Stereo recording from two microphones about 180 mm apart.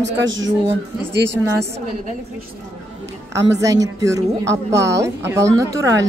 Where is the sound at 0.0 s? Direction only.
90° right.